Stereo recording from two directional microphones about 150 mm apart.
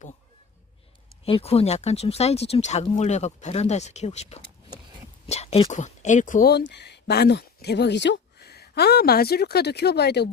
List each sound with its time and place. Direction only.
1.2 s speech: 40° left (ahead or behind); by 10.3 s 90° left